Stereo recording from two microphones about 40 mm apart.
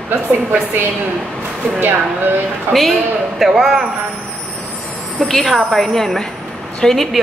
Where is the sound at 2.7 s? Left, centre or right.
Centre.